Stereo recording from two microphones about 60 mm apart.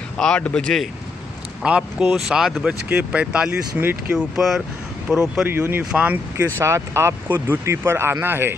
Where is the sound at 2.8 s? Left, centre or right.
Centre.